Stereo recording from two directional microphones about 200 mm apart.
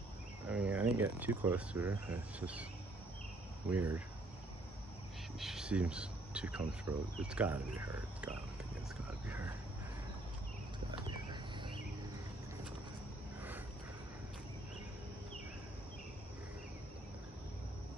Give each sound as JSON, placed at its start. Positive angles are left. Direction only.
{"t": 0.5, "sound": "speech", "side_deg": -10}
{"t": 3.7, "sound": "speech", "side_deg": -15}
{"t": 5.4, "sound": "speech", "side_deg": -5}
{"t": 9.3, "sound": "speech", "side_deg": -10}